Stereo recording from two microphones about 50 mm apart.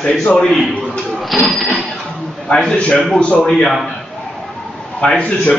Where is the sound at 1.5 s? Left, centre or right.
Centre.